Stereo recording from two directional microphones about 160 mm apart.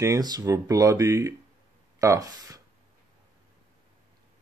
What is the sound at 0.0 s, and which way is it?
Speech, 20° right (ahead or behind).